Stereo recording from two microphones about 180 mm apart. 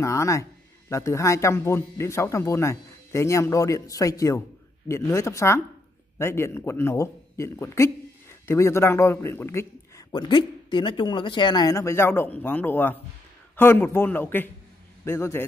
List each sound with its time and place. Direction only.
0.0 s a man's voice: 15° left (ahead or behind)
10.1 s a man's voice: 25° left (ahead or behind)